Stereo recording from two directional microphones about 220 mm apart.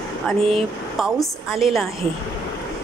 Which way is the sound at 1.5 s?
Centre (ahead or behind).